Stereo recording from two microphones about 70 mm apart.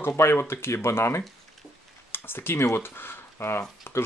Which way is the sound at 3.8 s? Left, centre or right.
Left.